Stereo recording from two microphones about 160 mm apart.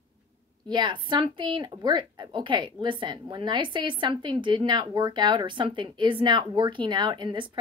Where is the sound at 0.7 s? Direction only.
30° right (ahead or behind).